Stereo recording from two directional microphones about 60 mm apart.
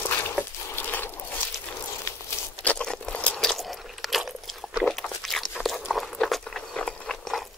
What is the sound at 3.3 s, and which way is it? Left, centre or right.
Biting, centre.